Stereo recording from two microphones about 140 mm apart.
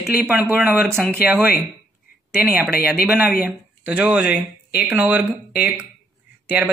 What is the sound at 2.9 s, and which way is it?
A man's voice, 10° right (ahead or behind).